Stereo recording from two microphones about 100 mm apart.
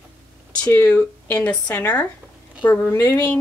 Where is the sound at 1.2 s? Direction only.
15° left (ahead or behind).